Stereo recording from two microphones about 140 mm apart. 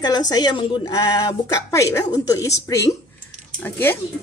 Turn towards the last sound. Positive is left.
turn(degrees=15)  # may be behind; listen again after turning